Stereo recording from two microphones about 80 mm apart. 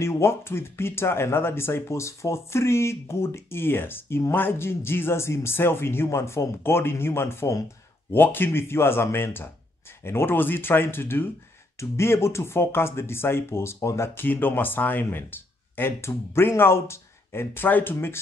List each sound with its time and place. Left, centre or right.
0.0 s speech: left